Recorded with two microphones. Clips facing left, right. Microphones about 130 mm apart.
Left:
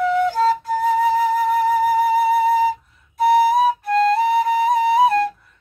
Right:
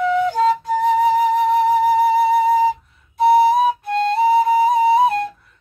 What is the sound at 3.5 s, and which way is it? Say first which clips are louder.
Flute: right 1 dB; centre (ahead or behind).